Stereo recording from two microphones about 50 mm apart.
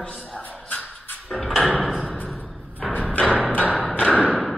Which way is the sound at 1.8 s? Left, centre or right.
Centre.